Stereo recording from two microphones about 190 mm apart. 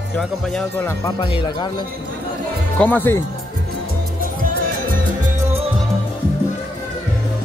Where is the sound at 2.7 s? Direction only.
10° left (ahead or behind).